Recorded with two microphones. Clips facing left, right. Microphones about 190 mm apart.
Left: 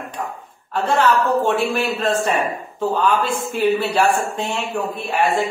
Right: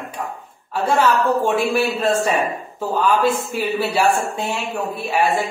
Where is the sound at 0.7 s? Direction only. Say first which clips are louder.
Even; 10° right (ahead or behind).